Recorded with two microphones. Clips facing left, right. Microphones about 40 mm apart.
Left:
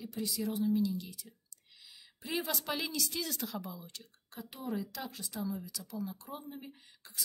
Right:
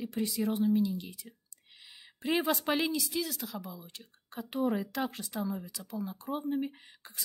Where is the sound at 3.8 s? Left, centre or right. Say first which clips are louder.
Right 1 dB; centre.